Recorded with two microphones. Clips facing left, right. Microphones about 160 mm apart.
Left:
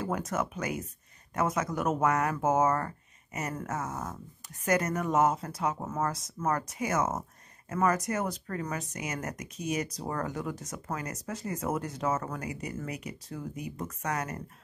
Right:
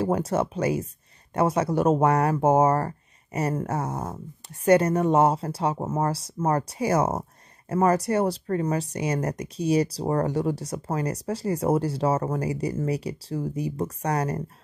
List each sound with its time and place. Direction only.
0.0 s speech: 30° right (ahead or behind)